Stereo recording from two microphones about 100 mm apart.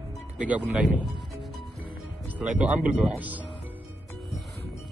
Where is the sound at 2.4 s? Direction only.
15° right (ahead or behind).